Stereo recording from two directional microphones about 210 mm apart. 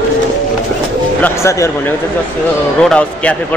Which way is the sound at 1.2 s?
15° left (ahead or behind).